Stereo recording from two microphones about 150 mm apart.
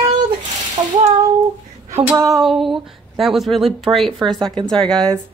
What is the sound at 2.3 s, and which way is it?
Speech, centre (ahead or behind).